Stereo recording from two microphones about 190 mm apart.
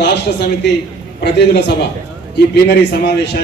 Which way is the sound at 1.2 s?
65° left (ahead or behind).